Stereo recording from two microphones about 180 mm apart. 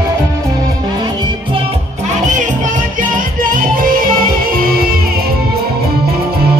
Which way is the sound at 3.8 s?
50° right (ahead or behind).